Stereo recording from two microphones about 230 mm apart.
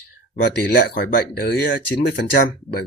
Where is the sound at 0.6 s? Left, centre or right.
Left.